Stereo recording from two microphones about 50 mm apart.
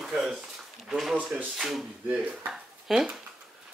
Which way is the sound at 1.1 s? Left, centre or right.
Right.